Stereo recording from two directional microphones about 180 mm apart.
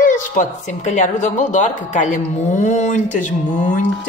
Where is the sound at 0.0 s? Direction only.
45° left (ahead or behind).